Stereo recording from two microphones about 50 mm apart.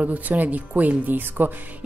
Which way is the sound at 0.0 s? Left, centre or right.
Right.